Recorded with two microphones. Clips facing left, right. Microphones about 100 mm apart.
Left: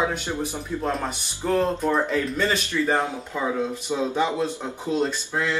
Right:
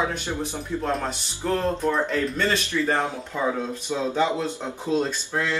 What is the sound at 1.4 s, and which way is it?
Speech, 5° left (ahead or behind).